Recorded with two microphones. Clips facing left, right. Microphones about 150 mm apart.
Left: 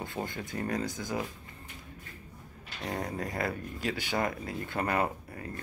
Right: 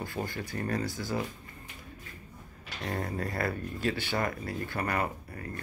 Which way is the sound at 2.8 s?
15° left (ahead or behind).